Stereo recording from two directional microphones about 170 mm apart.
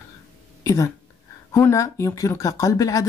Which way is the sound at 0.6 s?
20° left (ahead or behind).